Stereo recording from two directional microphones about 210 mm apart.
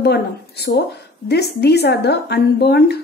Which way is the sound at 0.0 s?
50° left (ahead or behind).